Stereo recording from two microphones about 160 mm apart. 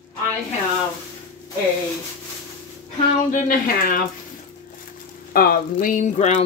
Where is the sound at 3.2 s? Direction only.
60° left (ahead or behind).